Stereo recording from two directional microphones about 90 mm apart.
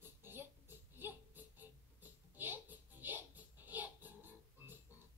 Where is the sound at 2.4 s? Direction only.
20° right (ahead or behind).